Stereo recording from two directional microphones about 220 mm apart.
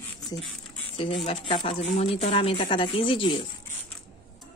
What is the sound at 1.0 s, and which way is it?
Speech, 25° left (ahead or behind).